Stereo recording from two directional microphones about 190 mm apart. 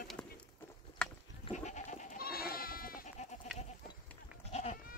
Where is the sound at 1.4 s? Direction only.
40° left (ahead or behind).